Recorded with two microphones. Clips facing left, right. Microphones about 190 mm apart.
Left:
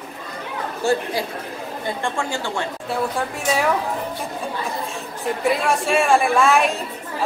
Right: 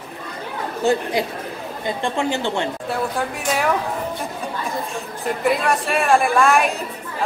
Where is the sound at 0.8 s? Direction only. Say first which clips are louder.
Right 2 dB; 20° right (ahead or behind).